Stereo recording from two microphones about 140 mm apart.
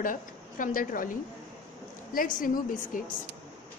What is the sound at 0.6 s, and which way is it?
A woman's voice, 75° left (ahead or behind).